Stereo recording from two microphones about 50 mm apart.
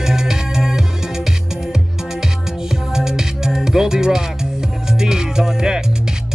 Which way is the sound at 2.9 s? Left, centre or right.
Centre.